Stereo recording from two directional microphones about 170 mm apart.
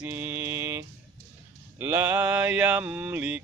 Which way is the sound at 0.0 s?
10° right (ahead or behind).